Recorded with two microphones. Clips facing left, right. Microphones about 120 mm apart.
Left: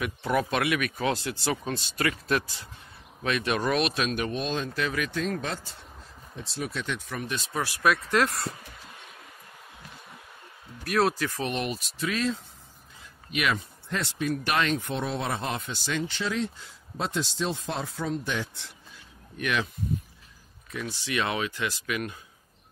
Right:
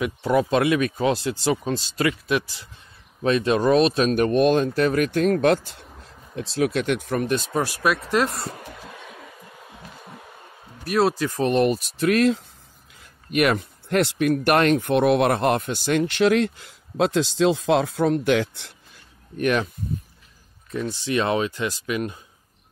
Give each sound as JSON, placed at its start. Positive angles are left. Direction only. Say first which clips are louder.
{"t": 0.0, "sound": "speech", "louder": "right 6 dB", "side_deg": -25}
{"t": 3.2, "sound": "speech", "louder": "right 7 dB", "side_deg": -30}
{"t": 4.1, "sound": "speech", "louder": "right 12 dB", "side_deg": -50}
{"t": 6.3, "sound": "speech", "louder": "right 11 dB", "side_deg": -90}
{"t": 7.8, "sound": "speech", "louder": "right 1 dB", "side_deg": -20}
{"t": 10.9, "sound": "speech", "louder": "right 4 dB", "side_deg": -25}
{"t": 11.3, "sound": "speech", "louder": "right 11 dB", "side_deg": -40}
{"t": 13.3, "sound": "speech", "louder": "right 8 dB", "side_deg": -50}
{"t": 19.3, "sound": "speech", "louder": "right 7 dB", "side_deg": -45}
{"t": 20.7, "sound": "speech", "louder": "right 7 dB", "side_deg": -30}